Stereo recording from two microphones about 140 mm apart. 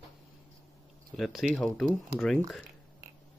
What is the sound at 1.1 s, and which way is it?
Speech, centre (ahead or behind).